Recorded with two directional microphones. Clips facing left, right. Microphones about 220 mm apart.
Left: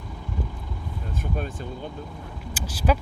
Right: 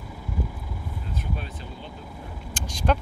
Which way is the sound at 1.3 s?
50° left (ahead or behind).